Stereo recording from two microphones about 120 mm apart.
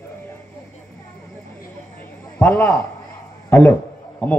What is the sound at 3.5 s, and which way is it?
Speech, 15° left (ahead or behind).